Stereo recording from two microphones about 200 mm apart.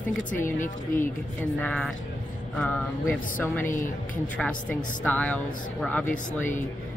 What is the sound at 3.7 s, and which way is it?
Speech, 40° left (ahead or behind).